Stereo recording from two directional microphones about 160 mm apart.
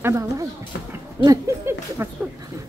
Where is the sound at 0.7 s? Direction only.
90° left.